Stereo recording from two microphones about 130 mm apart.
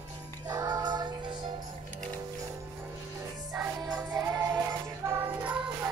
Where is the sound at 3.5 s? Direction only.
5° right (ahead or behind).